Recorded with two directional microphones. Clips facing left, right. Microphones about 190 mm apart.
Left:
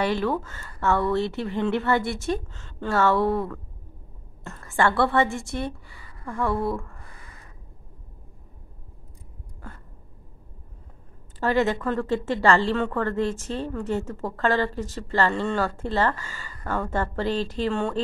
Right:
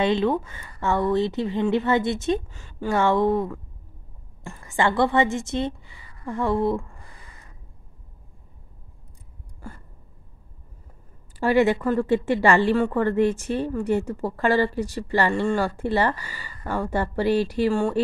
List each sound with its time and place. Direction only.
0.0 s a woman's voice: 20° right (ahead or behind)
11.3 s speech: 10° right (ahead or behind)